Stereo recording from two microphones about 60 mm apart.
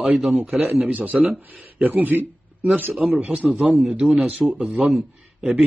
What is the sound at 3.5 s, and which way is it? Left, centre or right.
A man's voice, centre.